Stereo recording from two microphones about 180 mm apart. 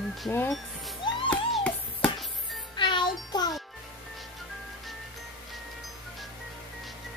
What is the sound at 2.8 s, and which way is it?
Music, 25° left (ahead or behind).